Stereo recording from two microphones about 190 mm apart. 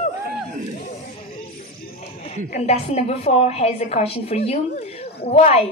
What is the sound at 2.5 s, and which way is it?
A woman's voice, 35° left (ahead or behind).